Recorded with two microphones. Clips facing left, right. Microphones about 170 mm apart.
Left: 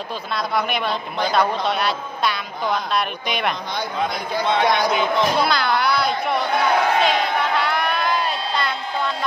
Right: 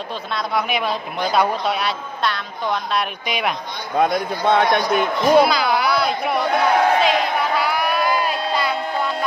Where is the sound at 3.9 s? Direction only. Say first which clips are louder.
Right 7 dB; 50° right (ahead or behind).